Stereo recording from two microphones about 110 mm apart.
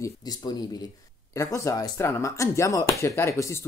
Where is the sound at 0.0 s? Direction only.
35° left (ahead or behind).